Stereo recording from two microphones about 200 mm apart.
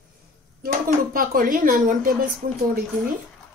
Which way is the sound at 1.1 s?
45° right (ahead or behind).